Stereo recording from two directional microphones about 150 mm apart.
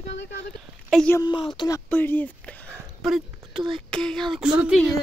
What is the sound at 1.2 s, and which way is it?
Speech, 30° left (ahead or behind).